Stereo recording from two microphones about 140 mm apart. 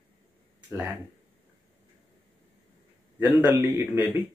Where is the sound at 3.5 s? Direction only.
20° right (ahead or behind).